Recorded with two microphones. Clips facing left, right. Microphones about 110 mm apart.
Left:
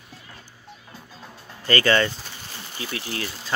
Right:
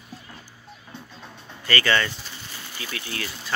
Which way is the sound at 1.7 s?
30° left (ahead or behind).